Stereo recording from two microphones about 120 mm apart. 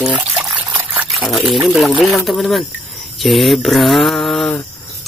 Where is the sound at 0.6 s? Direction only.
10° right (ahead or behind).